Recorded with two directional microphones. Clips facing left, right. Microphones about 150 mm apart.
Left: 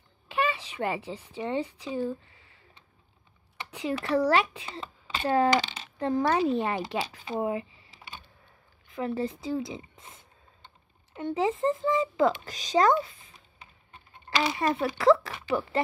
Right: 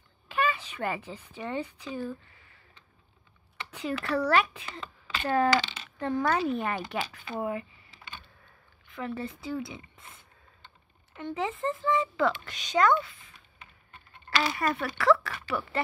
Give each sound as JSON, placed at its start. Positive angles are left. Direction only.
{"t": 0.3, "sound": "speech", "side_deg": 25}
{"t": 3.7, "sound": "a child's voice", "side_deg": 20}
{"t": 9.9, "sound": "a sound", "side_deg": 20}
{"t": 11.3, "sound": "speech", "side_deg": 30}